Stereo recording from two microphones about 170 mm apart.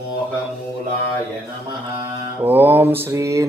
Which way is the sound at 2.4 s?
10° right (ahead or behind).